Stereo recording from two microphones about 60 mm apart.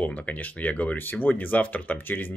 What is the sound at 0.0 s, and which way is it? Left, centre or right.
Speech, left.